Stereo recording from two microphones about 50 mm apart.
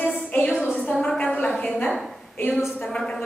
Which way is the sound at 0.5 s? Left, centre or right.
Centre.